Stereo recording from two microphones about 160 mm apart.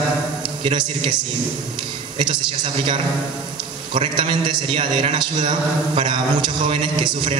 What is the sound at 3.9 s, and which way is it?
A man's voice, 30° right (ahead or behind).